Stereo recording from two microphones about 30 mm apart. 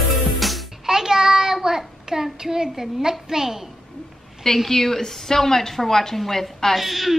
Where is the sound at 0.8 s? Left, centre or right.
Centre.